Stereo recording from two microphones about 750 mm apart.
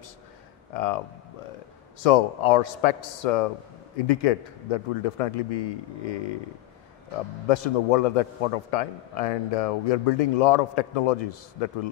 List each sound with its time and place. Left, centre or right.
0.7 s a man's voice: left
2.0 s a man's voice: left
7.4 s a man's voice: left